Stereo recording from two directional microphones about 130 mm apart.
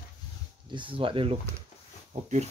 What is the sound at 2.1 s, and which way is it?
Speech, 65° right (ahead or behind).